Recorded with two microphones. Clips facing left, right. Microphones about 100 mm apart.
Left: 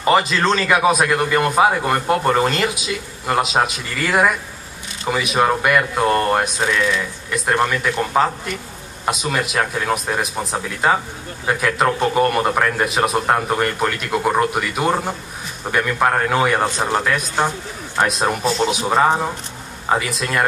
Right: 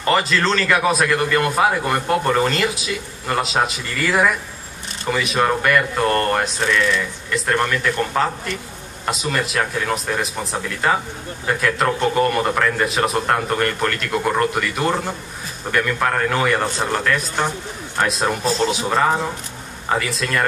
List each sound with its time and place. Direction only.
0.0 s a man's voice: 15° left (ahead or behind)